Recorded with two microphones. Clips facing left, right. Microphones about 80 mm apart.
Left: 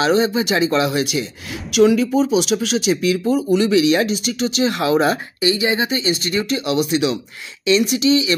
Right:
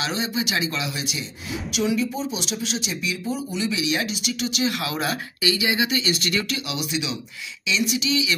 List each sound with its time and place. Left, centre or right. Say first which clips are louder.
0.0 s speech: left 10 dB; left
0.9 s speech: left 11 dB; left
6.7 s speech: left 10 dB; left